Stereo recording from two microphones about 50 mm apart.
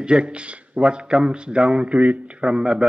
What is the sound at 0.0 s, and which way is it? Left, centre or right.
A man's voice, centre.